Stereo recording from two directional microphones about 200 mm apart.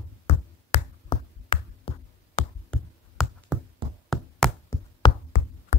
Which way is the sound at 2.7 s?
Centre (ahead or behind).